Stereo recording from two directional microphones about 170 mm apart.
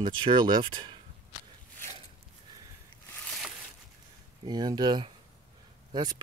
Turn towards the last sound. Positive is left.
turn(degrees=-25)  # may be behind; listen again after turning